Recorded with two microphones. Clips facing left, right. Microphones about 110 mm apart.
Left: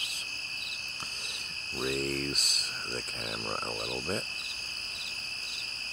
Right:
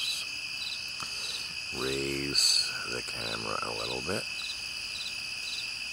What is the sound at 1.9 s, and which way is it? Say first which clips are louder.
Speech: even; centre (ahead or behind).